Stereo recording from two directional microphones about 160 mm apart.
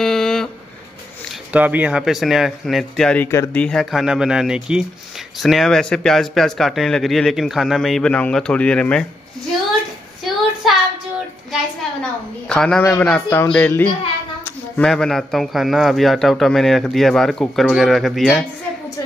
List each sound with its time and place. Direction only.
0.0 s a sound: 5° left (ahead or behind)
1.5 s speech: 10° right (ahead or behind)
3.3 s speech: 15° left (ahead or behind)
3.6 s speech: centre (ahead or behind)
10.2 s child singing: centre (ahead or behind)
11.5 s a sound: 5° left (ahead or behind)
14.8 s speech: 5° left (ahead or behind)